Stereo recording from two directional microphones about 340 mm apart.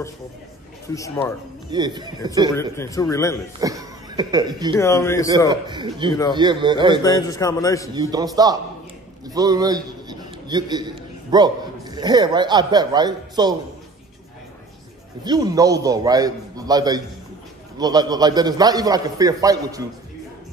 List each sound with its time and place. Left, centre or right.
0.8 s a man's voice: centre
1.7 s a man's voice: centre
2.7 s a man's voice: centre
3.6 s speech: centre
4.7 s a man's voice: centre
5.5 s a man's voice: centre
7.0 s a man's voice: centre
7.9 s a man's voice: centre
15.2 s a man's voice: centre